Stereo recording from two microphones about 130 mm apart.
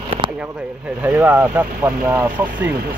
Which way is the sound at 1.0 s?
15° right (ahead or behind).